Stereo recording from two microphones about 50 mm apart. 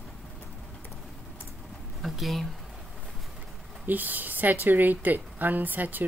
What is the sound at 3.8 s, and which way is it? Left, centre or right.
Speech, right.